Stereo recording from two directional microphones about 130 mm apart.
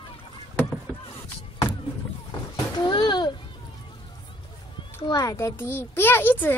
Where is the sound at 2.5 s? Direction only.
35° left (ahead or behind).